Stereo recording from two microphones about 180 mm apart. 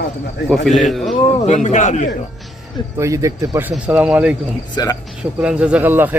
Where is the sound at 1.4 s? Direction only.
40° left (ahead or behind).